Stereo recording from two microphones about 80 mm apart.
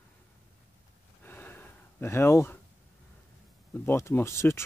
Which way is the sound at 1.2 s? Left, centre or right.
Left.